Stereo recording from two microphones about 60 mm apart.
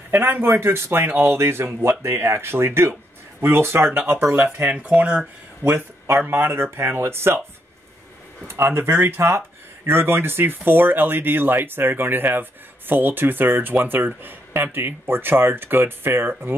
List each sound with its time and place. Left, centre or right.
0.1 s speech: right
4.7 s dishes: right
5.6 s speech: right
8.5 s speech: right